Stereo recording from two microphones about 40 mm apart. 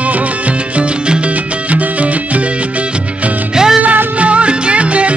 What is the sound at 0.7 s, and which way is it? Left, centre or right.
Music, right.